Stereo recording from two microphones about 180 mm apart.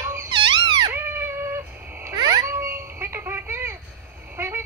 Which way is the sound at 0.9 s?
10° right (ahead or behind).